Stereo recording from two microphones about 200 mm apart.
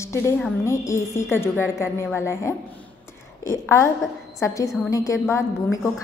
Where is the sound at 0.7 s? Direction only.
15° left (ahead or behind).